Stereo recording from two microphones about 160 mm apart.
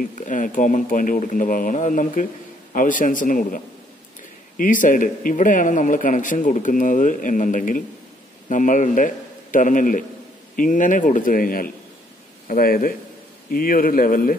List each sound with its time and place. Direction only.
0.0 s a man's voice: 55° left (ahead or behind)